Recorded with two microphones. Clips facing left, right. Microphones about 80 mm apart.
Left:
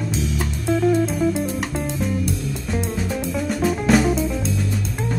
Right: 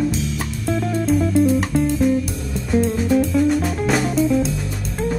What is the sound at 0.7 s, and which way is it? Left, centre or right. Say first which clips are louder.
Music: left 1 dB; centre.